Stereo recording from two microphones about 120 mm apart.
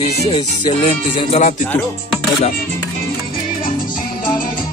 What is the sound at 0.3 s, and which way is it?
Music, 40° left (ahead or behind).